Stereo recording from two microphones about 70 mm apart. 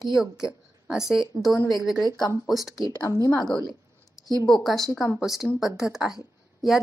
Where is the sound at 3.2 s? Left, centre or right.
Left.